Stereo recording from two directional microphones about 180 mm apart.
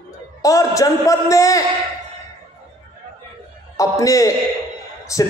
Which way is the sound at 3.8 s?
20° left (ahead or behind).